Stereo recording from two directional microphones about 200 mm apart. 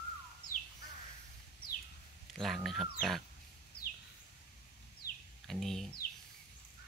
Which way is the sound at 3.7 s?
50° left (ahead or behind).